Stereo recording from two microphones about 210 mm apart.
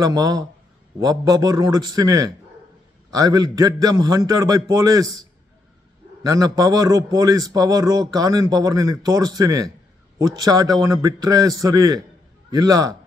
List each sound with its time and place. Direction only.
0.0 s a man's voice: 15° right (ahead or behind)
6.2 s a man's voice: 15° right (ahead or behind)